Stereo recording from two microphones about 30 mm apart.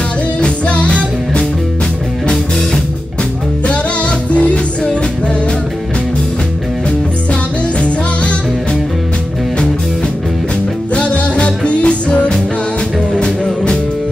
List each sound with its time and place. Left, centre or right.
0.4 s music: left
3.6 s music: left
11.0 s music: left
13.1 s music: left